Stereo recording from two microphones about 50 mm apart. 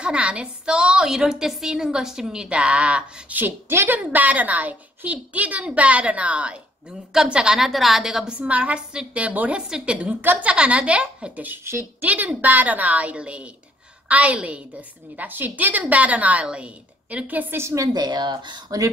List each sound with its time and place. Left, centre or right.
0.0 s a woman's voice: right
3.3 s a woman's voice: right; by 8.3 s centre
8.3 s a woman's voice: right
9.7 s a woman's voice: centre
9.9 s a woman's voice: right
10.5 s a woman's voice: right
11.7 s speech: right
12.0 s a woman's voice: right
15.1 s a woman's voice: right
17.6 s a woman's voice: right